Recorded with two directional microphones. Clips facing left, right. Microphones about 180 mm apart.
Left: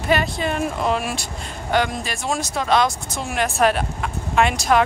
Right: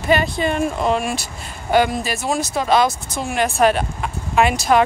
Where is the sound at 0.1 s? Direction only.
Centre (ahead or behind).